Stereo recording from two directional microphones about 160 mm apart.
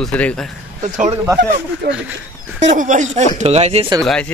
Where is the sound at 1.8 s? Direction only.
80° right.